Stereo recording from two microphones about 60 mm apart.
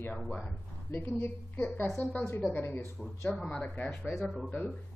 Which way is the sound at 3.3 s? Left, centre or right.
Centre.